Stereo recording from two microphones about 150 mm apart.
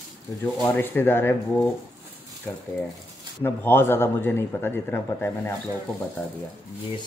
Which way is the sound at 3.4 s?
15° left (ahead or behind).